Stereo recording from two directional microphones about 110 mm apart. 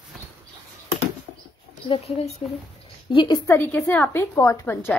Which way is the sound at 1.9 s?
65° left (ahead or behind).